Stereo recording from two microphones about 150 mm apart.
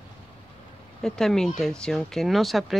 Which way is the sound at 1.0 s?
5° left (ahead or behind).